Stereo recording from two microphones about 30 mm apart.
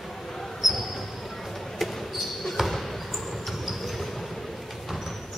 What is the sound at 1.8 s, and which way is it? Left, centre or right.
Basketball bounce, centre.